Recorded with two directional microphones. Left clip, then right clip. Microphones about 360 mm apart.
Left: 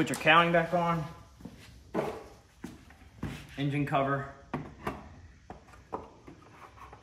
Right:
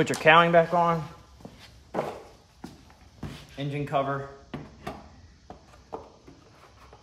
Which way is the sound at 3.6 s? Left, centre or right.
Centre.